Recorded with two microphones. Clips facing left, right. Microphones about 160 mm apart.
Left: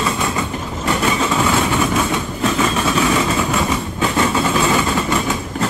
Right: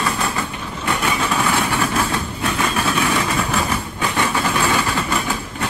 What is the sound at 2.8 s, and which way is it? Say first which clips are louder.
Vehicle: left 3 dB; 25° left (ahead or behind).